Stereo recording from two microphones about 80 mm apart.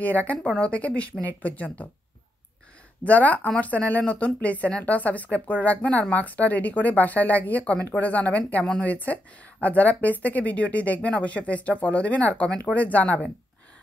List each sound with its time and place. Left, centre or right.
0.0 s speech: centre
3.0 s speech: centre